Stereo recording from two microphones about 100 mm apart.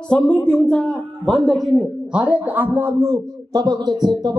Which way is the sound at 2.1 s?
10° right (ahead or behind).